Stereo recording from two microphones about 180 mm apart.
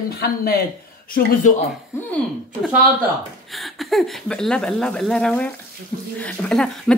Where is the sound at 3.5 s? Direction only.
Centre (ahead or behind).